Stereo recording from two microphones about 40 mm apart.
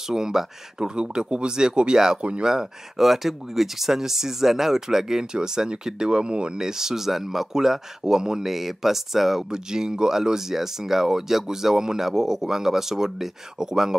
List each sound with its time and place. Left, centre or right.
0.1 s speech: centre
6.6 s speech: centre